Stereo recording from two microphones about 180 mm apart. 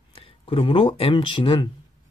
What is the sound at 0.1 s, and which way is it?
Speech, 30° left (ahead or behind).